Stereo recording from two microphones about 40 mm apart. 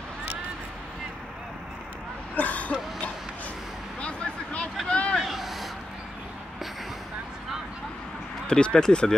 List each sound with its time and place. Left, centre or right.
2.3 s a sound: left
4.8 s vehicle: left
5.3 s vehicle: centre
8.5 s speech: left